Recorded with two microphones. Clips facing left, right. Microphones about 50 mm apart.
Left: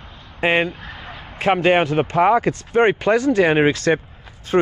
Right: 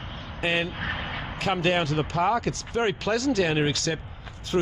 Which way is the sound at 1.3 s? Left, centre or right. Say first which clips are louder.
Left 9 dB; left.